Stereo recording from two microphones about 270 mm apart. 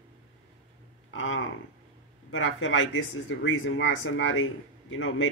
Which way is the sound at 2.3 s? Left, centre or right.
Left.